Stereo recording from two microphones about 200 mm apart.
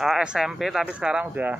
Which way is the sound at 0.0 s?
5° right (ahead or behind).